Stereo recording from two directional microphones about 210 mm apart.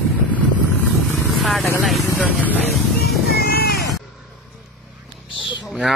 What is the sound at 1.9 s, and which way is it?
Music, centre (ahead or behind).